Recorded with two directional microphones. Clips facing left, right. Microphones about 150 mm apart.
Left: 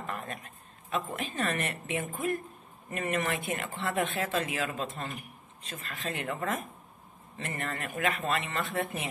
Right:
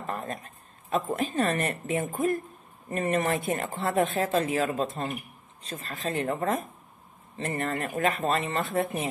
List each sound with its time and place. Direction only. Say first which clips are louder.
0.0 s a woman's voice: right 4 dB; 35° right (ahead or behind)